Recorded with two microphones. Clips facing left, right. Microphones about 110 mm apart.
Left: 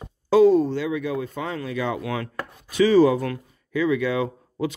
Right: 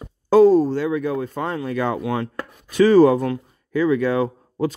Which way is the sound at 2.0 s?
30° right (ahead or behind).